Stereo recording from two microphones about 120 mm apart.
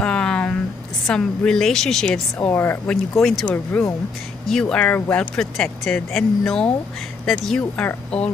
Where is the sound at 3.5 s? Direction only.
15° left (ahead or behind).